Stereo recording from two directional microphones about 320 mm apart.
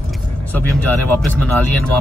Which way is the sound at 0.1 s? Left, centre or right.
Centre.